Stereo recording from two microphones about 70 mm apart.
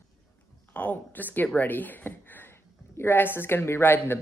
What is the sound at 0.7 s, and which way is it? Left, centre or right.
A woman's voice, left.